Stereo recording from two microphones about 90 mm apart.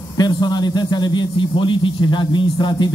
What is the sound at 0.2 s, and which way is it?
A man's voice, 50° left (ahead or behind).